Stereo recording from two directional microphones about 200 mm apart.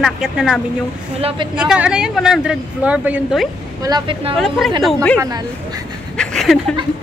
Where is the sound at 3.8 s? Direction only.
25° right (ahead or behind).